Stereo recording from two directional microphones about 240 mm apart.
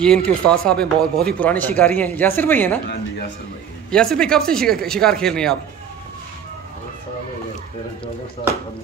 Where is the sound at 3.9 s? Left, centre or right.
Centre.